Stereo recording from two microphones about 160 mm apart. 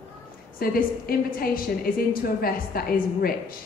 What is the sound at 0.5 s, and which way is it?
A woman's voice, 65° left (ahead or behind).